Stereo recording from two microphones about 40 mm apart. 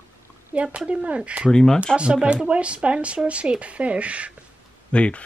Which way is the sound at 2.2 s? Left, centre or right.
Right.